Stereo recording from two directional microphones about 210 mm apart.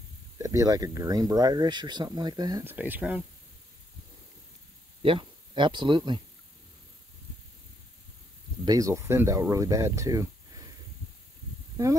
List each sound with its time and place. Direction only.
0.4 s speech: 15° right (ahead or behind)
5.0 s speech: 25° right (ahead or behind)
8.6 s speech: 15° right (ahead or behind)
11.7 s snake: 15° right (ahead or behind)